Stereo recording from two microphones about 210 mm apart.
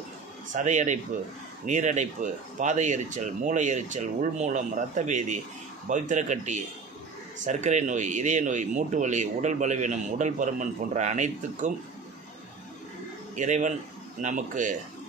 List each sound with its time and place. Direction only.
0.5 s speech: 35° right (ahead or behind)
13.4 s speech: 35° right (ahead or behind)